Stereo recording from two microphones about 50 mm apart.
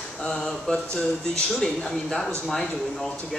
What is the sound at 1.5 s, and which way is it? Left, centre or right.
Speech, centre.